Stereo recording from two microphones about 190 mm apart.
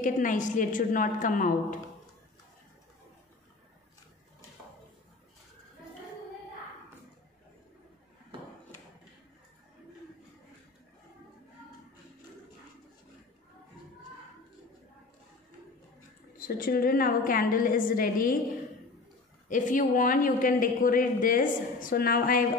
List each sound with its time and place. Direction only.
0.0 s a woman's voice: 45° left (ahead or behind)
16.3 s a woman's voice: 50° left (ahead or behind)
19.5 s a woman's voice: 45° left (ahead or behind)